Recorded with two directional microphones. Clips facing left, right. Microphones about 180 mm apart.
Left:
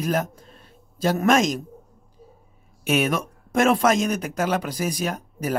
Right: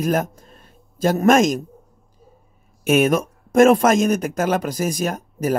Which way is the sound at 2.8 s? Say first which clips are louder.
Right 6 dB; 45° right (ahead or behind).